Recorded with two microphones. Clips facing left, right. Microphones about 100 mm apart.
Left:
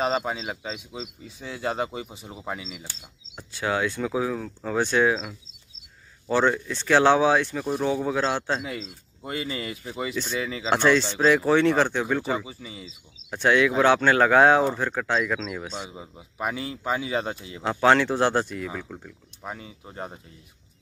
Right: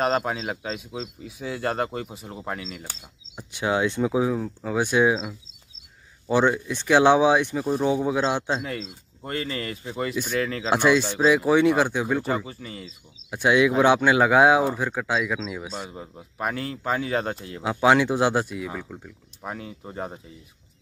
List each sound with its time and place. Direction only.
0.0 s speech: centre (ahead or behind)
3.3 s speech: 20° right (ahead or behind)
9.2 s speech: 10° left (ahead or behind)
10.1 s speech: 10° right (ahead or behind)
10.4 s speech: 5° left (ahead or behind)
10.7 s speech: 10° right (ahead or behind)
13.3 s speech: 10° right (ahead or behind)